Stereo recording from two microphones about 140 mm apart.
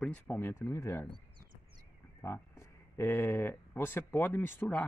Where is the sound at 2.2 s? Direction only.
20° left (ahead or behind).